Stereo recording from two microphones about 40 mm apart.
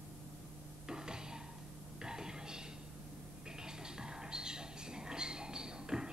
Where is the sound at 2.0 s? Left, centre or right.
Centre.